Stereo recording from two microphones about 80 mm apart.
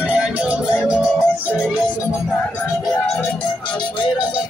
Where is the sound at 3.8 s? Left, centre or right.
Left.